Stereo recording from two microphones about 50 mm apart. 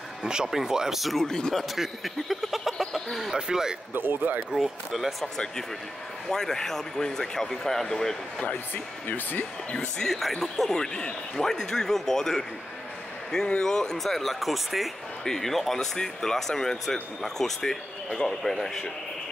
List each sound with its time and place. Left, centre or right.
0.2 s speech: centre
1.2 s speech: centre
1.8 s speech: centre
3.9 s speech: right
4.6 s speech: centre
6.3 s speech: centre
9.0 s speech: left
9.7 s speech: left
10.0 s speech: centre
13.5 s speech: centre
13.9 s speech: centre